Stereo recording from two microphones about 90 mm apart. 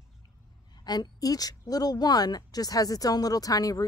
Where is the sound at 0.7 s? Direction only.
50° left (ahead or behind).